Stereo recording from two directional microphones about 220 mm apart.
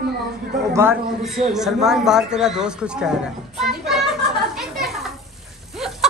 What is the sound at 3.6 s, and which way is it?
Children playing, centre (ahead or behind).